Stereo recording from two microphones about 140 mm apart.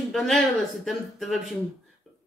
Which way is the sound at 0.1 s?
Centre (ahead or behind).